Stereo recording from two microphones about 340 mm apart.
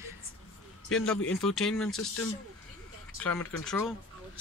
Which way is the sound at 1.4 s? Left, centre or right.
Centre.